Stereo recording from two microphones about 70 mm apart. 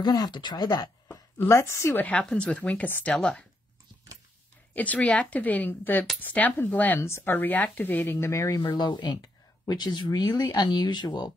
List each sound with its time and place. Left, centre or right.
0.0 s speech: left
1.0 s a sound: left
2.0 s a woman's voice: left
4.7 s a woman's voice: left
7.0 s speech: left
7.3 s a woman's voice: left
8.7 s speech: left